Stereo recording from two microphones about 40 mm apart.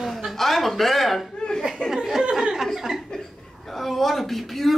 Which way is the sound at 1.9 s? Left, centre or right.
Centre.